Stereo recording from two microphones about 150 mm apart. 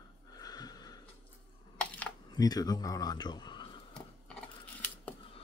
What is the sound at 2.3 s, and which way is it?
Speech, 25° left (ahead or behind).